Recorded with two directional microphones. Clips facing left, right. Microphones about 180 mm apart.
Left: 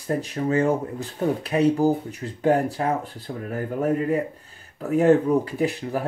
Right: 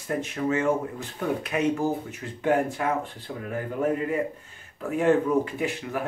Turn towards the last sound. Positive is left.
turn(degrees=35)  # may be behind; listen again after turning